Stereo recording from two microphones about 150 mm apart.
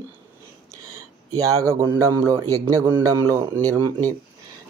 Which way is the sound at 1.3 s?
20° right (ahead or behind).